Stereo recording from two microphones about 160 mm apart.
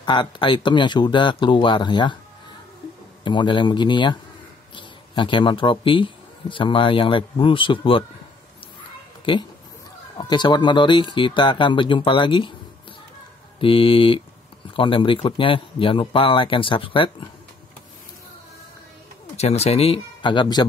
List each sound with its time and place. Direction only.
0.0 s speech: 30° left (ahead or behind)
3.3 s a man's voice: 30° left (ahead or behind)
9.2 s speech: 30° left (ahead or behind)
13.6 s a man's voice: 35° left (ahead or behind)
19.3 s speech: 40° left (ahead or behind)